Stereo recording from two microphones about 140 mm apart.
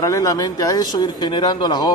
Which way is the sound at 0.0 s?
25° left (ahead or behind).